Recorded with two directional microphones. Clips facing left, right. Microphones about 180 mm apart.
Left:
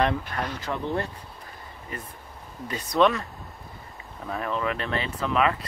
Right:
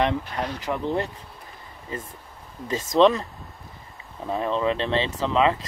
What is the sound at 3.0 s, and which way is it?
Speech, 20° right (ahead or behind).